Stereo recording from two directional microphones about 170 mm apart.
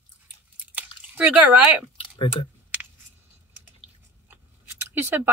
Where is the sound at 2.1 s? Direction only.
30° left (ahead or behind).